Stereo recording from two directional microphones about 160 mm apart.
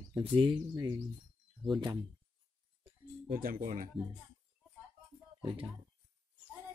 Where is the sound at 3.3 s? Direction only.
65° right (ahead or behind).